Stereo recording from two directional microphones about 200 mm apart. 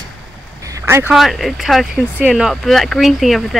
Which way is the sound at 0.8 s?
10° right (ahead or behind).